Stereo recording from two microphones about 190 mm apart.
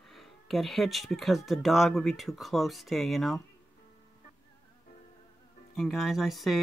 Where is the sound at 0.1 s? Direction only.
Centre (ahead or behind).